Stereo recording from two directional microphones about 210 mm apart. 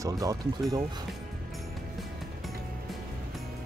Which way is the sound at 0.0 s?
15° right (ahead or behind).